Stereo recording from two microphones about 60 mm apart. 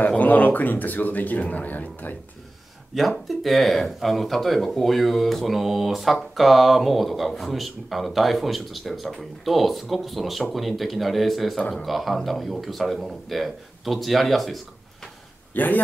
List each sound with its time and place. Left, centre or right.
0.2 s speech: left
2.9 s speech: centre
15.5 s speech: left